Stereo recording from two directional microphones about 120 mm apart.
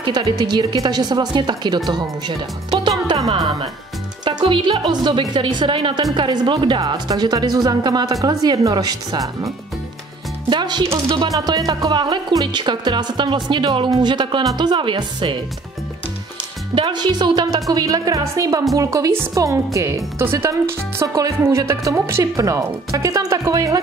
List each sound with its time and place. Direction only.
0.0 s a woman's voice: 40° right (ahead or behind)
4.2 s a woman's voice: 40° right (ahead or behind)
10.5 s a woman's voice: 40° right (ahead or behind)
16.7 s a woman's voice: 40° right (ahead or behind)